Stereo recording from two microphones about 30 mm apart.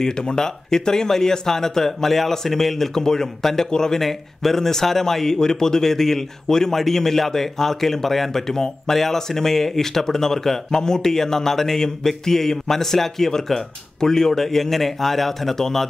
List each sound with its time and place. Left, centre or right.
0.0 s speech: left
4.0 s speech: centre